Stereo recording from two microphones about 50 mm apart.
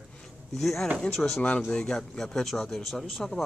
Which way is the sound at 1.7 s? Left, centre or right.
Centre.